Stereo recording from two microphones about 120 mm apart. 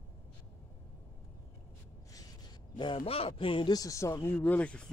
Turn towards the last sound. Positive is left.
turn(degrees=10)  # may be behind; listen again after turning